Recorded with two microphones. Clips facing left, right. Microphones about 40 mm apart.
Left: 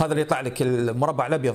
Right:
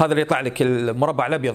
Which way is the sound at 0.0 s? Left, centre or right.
Right.